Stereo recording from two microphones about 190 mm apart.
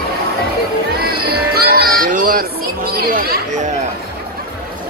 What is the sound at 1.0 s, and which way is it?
Music, 55° right (ahead or behind).